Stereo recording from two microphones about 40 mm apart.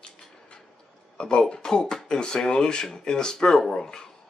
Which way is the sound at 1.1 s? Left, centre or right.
Left.